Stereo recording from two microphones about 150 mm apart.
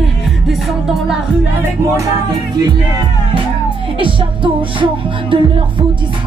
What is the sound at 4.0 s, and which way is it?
Music, 35° right (ahead or behind).